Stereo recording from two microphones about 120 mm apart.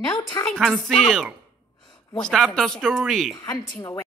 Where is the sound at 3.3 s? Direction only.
30° left (ahead or behind).